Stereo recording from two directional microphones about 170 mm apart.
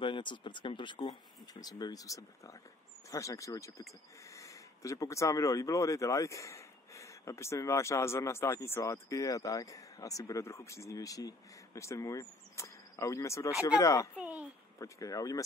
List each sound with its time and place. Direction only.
0.0 s speech: 30° left (ahead or behind)